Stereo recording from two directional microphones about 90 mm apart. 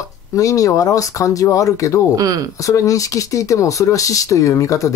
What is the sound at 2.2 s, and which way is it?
Speech, 40° right (ahead or behind).